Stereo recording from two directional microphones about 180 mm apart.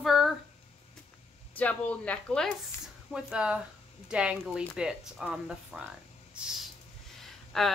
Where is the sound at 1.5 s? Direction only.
5° left (ahead or behind).